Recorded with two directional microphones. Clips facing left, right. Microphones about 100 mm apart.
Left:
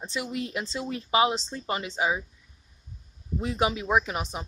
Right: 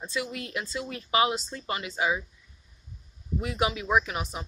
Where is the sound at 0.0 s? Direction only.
25° left (ahead or behind).